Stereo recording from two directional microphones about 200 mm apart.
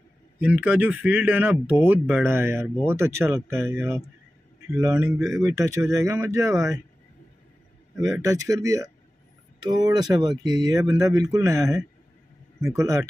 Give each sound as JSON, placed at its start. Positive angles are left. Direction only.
{"t": 0.4, "sound": "speech", "side_deg": -5}
{"t": 8.0, "sound": "speech", "side_deg": -15}